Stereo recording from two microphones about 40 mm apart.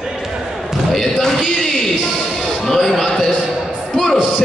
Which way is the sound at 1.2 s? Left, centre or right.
Centre.